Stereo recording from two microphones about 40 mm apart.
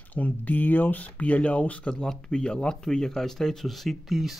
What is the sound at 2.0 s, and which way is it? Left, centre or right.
Speech, centre.